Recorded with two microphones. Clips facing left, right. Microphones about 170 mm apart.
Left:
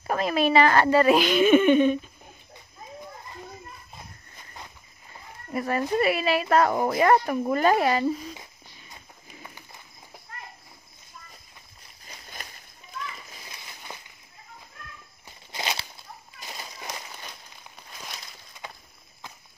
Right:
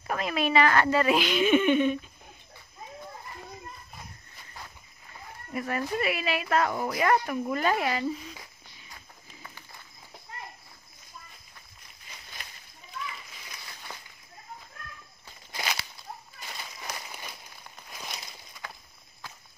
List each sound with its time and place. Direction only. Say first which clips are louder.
0.0 s speech: left 5 dB; 35° left (ahead or behind)
5.5 s speech: left 5 dB; 35° left (ahead or behind)
7.0 s speech: left 4 dB; 35° left (ahead or behind)
15.2 s a sound: left 2 dB; 25° left (ahead or behind)
18.6 s clip-clop: left 2 dB; 20° left (ahead or behind)